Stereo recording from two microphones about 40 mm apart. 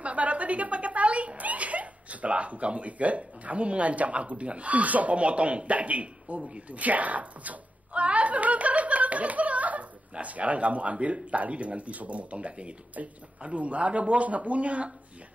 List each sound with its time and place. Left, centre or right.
0.0 s speech: right
6.5 s a sound: right
10.1 s speech: right